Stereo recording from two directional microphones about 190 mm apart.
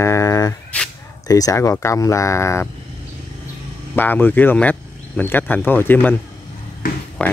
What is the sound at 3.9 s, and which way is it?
Speech, 10° left (ahead or behind).